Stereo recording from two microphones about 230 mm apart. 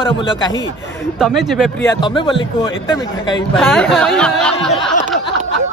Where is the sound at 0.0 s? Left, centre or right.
Left.